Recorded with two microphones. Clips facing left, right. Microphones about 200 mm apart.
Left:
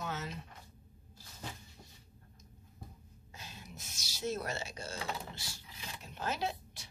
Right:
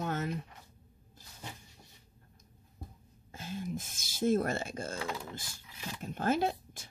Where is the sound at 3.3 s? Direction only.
50° right (ahead or behind).